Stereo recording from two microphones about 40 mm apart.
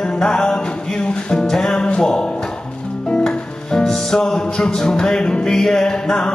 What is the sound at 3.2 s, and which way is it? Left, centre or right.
Music, centre.